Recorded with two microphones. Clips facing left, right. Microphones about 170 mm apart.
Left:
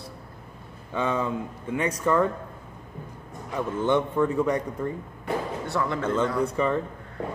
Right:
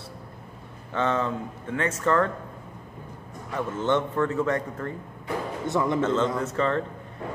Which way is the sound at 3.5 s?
15° left (ahead or behind).